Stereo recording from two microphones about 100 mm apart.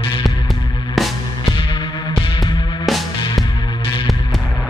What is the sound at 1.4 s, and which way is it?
Music, 55° left (ahead or behind).